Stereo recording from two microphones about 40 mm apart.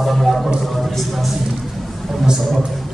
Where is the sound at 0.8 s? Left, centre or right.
Centre.